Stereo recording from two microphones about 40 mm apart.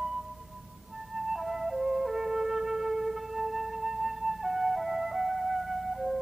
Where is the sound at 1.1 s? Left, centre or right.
Centre.